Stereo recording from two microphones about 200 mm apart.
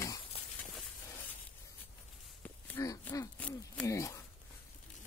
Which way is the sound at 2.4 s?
15° left (ahead or behind).